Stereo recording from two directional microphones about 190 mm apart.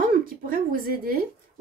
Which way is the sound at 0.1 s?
45° right (ahead or behind).